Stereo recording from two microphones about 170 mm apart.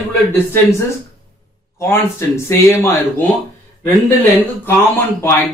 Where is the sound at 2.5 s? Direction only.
15° left (ahead or behind).